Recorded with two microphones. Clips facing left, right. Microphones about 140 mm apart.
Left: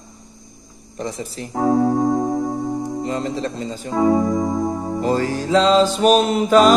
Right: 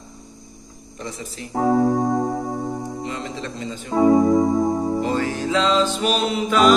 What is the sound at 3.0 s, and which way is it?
Music, 40° left (ahead or behind).